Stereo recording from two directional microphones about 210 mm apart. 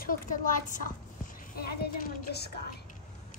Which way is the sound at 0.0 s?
40° left (ahead or behind).